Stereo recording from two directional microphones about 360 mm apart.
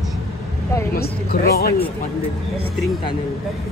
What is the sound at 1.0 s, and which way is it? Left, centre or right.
Speech, left.